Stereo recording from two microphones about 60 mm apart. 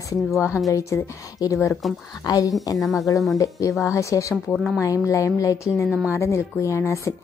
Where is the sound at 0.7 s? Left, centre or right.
Left.